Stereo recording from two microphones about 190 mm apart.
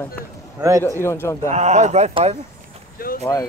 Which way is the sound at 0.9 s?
15° left (ahead or behind).